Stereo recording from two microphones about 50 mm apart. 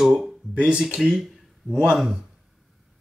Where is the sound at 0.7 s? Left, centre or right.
Centre.